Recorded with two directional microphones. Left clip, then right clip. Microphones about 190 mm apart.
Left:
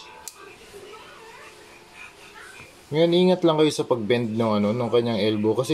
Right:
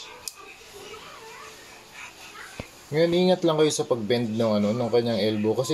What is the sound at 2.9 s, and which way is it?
Speech, 20° left (ahead or behind).